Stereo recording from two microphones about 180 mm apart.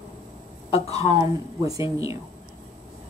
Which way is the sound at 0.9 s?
20° right (ahead or behind).